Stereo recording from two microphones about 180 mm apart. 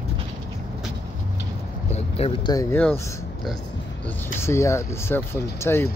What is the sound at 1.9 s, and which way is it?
Speech, 35° left (ahead or behind).